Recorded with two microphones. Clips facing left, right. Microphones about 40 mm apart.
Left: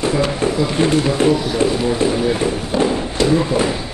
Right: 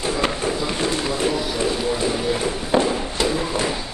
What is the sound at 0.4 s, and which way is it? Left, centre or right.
Speech, left.